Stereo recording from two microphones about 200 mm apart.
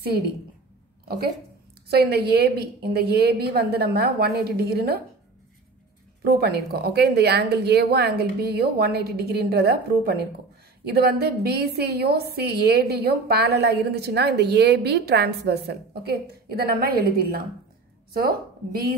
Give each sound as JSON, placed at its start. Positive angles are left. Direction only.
{"t": 1.0, "sound": "a woman's voice", "side_deg": -50}
{"t": 6.2, "sound": "a woman's voice", "side_deg": -50}